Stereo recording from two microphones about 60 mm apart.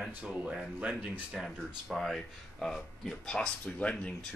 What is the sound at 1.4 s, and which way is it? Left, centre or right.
Speech, centre.